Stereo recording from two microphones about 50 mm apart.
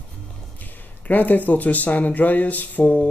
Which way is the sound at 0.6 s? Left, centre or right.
Left.